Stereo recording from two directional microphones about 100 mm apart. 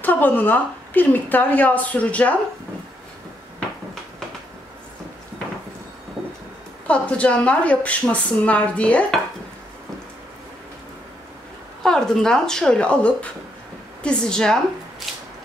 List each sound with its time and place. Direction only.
0.0 s a woman's voice: 20° left (ahead or behind)
6.9 s a woman's voice: 10° left (ahead or behind)
11.8 s a woman's voice: 5° left (ahead or behind)